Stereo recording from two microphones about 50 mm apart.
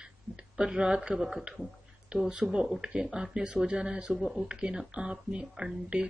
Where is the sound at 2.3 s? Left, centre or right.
Centre.